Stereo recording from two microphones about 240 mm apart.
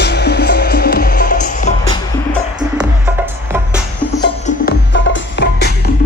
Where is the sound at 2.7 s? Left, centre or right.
Centre.